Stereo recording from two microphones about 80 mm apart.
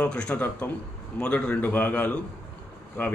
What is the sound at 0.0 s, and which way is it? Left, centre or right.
A man's voice, centre.